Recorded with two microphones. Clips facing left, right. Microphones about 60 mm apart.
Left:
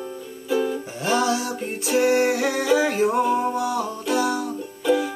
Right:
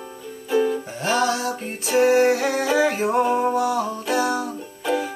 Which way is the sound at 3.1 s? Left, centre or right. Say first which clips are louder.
Right 1 dB; right.